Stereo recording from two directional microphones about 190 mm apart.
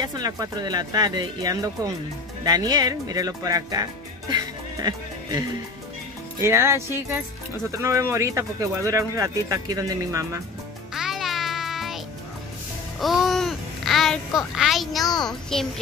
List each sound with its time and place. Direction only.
0.0 s speech: 20° right (ahead or behind)
6.4 s speech: 15° right (ahead or behind)
11.0 s music: centre (ahead or behind)
13.0 s babbling: centre (ahead or behind)
14.5 s speech: centre (ahead or behind)